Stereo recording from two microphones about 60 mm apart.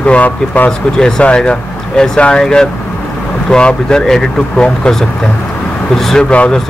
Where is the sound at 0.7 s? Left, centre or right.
Centre.